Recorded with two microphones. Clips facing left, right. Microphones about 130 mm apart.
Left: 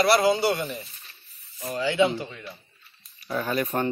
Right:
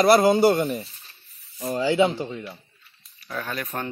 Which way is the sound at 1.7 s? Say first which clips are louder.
Right 2 dB; 35° right (ahead or behind).